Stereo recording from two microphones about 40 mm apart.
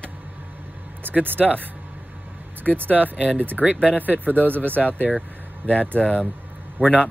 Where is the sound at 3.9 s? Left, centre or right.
Right.